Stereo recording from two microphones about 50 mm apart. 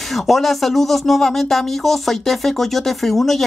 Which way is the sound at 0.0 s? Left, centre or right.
Centre.